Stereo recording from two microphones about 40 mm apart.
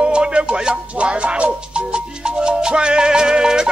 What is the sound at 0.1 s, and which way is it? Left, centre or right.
Music, right.